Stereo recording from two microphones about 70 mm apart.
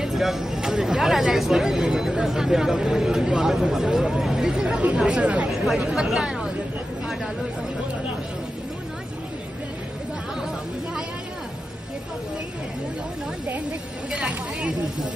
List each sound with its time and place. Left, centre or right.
0.0 s speech: centre
5.5 s speech: centre
14.1 s speech: centre